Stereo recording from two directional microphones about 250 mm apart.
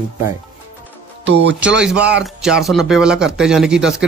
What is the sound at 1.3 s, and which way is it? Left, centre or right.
Speech, right.